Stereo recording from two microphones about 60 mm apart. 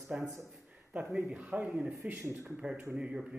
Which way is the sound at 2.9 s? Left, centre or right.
Centre.